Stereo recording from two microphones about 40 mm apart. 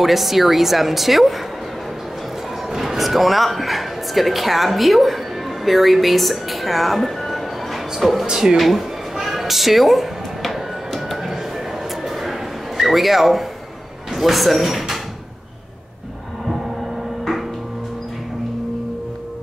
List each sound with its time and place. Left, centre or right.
0.0 s a woman's voice: centre
2.7 s a woman's voice: centre
8.3 s speech: centre
8.5 s a sound: centre
14.1 s speech: centre
17.2 s a sound: centre